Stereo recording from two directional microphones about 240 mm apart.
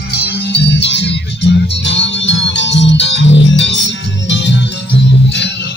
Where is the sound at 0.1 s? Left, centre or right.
Left.